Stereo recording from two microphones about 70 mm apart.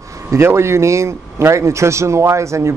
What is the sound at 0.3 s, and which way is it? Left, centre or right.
A man's voice, right.